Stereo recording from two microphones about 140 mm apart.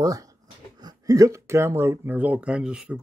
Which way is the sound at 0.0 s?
25° right (ahead or behind).